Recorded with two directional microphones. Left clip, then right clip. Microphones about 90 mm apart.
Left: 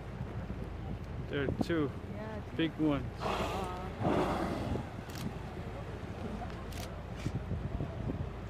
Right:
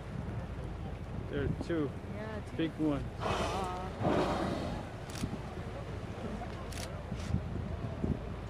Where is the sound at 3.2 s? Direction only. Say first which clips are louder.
Right 4 dB; 15° right (ahead or behind).